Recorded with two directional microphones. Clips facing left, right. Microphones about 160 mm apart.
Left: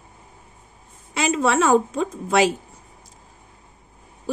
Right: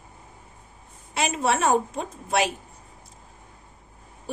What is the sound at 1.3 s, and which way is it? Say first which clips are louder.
Speech: left 6 dB; 90° left.